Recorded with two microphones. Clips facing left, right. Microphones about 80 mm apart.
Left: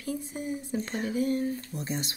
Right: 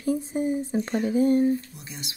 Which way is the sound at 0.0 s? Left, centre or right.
Right.